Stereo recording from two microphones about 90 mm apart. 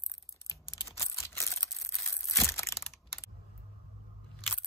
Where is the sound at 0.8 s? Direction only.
35° left (ahead or behind).